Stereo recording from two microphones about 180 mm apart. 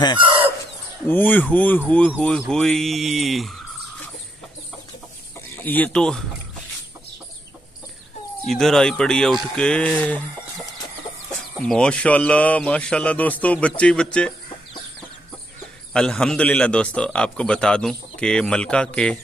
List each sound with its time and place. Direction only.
0.2 s chicken: 30° right (ahead or behind)
1.0 s a man's voice: 10° left (ahead or behind)
5.6 s speech: 10° left (ahead or behind)
8.5 s a man's voice: centre (ahead or behind)
11.5 s speech: 5° left (ahead or behind)
15.9 s a man's voice: 5° left (ahead or behind)